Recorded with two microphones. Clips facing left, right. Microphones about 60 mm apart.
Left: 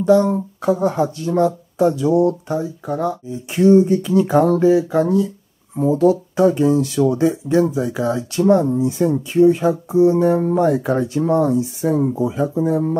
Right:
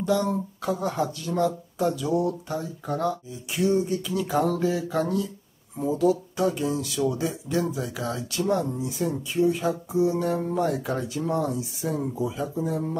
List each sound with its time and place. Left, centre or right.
0.0 s speech: left
2.4 s speech: centre
3.5 s speech: left
4.6 s speech: left
5.8 s speech: left